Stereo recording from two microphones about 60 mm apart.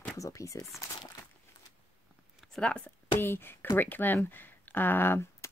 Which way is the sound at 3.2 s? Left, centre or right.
Left.